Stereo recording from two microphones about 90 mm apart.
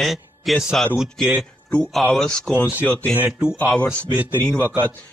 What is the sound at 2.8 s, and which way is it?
Speech, 20° left (ahead or behind).